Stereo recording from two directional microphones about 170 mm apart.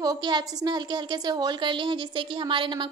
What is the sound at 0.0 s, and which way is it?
A woman's voice, 25° right (ahead or behind).